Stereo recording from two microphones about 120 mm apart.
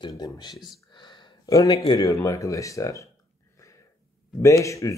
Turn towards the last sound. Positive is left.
turn(degrees=25)  # may be behind; listen again after turning